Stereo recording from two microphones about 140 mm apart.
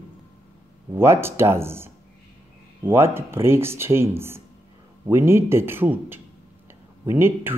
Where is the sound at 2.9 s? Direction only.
20° right (ahead or behind).